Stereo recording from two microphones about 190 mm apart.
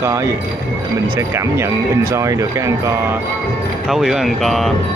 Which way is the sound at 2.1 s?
15° right (ahead or behind).